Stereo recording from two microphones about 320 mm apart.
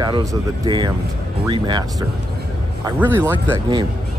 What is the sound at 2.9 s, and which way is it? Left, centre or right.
Speech, centre.